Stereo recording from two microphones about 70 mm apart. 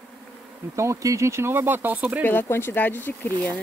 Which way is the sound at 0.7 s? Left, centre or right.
Right.